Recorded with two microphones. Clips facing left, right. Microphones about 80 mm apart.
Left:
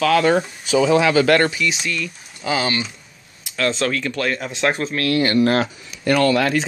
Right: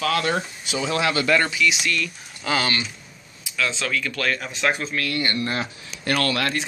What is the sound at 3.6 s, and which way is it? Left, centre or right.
Speech, left.